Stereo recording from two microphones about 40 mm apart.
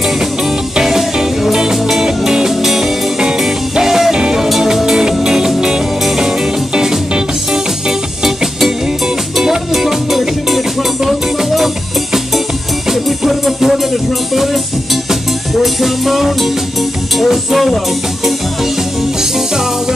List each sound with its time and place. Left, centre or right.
0.7 s music: centre
4.5 s music: centre
15.6 s music: centre